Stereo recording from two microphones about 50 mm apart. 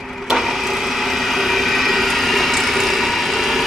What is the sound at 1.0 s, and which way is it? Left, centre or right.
Vehicle, centre.